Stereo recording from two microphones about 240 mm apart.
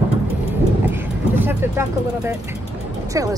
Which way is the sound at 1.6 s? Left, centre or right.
Centre.